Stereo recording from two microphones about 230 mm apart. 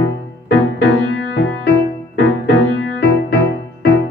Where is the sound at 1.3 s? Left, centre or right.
Left.